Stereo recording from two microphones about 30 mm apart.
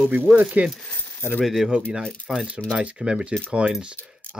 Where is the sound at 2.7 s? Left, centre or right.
Right.